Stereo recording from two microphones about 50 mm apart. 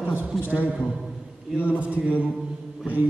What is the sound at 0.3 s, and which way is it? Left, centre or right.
Speech, centre.